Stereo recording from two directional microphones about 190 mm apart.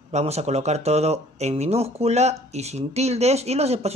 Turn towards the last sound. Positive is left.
turn(degrees=-35)  # may be behind; listen again after turning